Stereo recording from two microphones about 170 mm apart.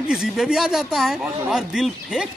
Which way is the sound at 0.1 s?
5° right (ahead or behind).